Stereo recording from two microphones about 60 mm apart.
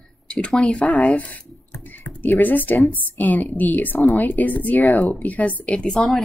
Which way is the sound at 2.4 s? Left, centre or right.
Left.